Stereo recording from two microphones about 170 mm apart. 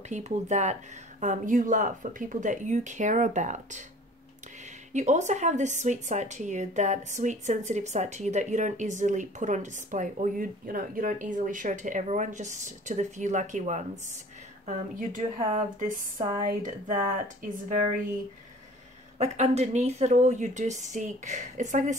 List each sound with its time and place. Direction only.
0.1 s a woman's voice: 45° right (ahead or behind)
4.9 s a woman's voice: 45° right (ahead or behind)
19.1 s a woman's voice: 40° right (ahead or behind)